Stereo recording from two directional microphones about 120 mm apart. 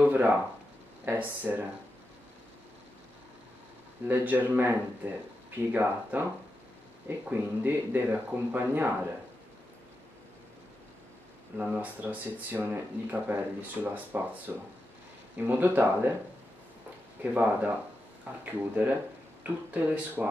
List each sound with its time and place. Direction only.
0.0 s speech: 15° right (ahead or behind)
4.1 s speech: 15° right (ahead or behind)
11.5 s speech: 15° right (ahead or behind)
15.3 s speech: 15° right (ahead or behind)
17.2 s speech: 15° right (ahead or behind)